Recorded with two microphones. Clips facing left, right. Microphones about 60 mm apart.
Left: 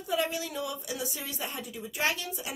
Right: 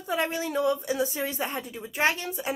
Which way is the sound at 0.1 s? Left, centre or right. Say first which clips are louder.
Right 3 dB; right.